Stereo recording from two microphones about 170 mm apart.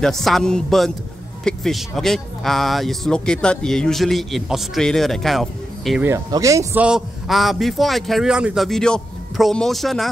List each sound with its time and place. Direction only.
0.0 s speech: centre (ahead or behind)
6.0 s speech: 20° right (ahead or behind)
6.8 s speech: 5° right (ahead or behind)